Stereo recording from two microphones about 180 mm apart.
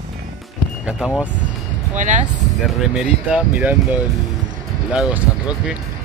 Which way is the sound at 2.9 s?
5° right (ahead or behind).